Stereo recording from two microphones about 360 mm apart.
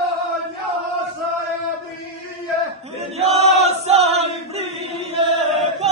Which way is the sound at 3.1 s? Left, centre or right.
Centre.